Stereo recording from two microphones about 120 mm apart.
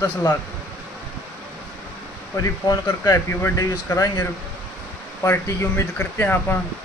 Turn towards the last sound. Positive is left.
turn(degrees=15)  # may be behind; listen again after turning